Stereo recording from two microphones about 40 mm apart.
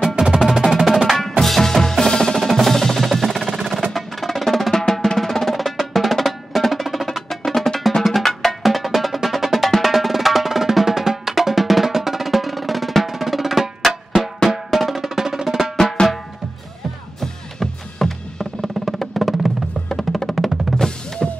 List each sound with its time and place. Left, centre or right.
0.0 s percussion: centre
0.4 s percussion: centre
3.9 s drum: centre
15.0 s drum: centre
17.2 s music: centre
18.9 s music: centre
20.7 s music: centre
21.2 s music: centre